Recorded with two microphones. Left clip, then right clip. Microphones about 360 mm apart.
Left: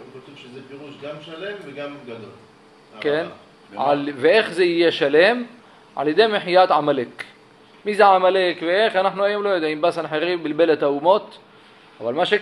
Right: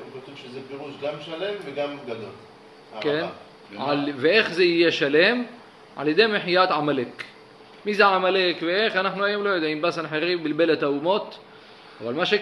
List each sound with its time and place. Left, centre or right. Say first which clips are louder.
3.0 s a man's voice: left 3 dB; centre